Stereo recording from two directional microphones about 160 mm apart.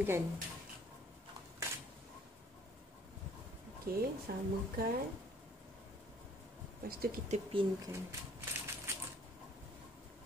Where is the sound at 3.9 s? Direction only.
70° right (ahead or behind).